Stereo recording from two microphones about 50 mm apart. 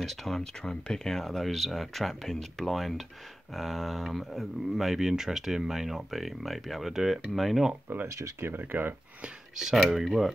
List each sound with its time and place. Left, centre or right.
0.0 s speech: centre
8.1 s speech: right
8.5 s speech: right
9.8 s speech: centre